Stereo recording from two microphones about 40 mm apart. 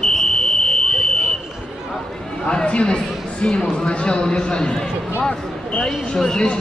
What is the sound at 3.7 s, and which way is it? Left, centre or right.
A man's voice, left.